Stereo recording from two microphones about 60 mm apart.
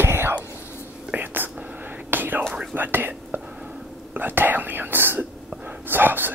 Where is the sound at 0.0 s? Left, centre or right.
Right.